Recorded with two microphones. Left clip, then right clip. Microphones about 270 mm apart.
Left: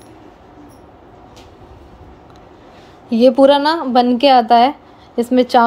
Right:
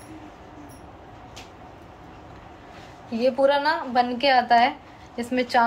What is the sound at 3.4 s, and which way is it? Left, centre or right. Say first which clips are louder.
Speech: left 9 dB; left.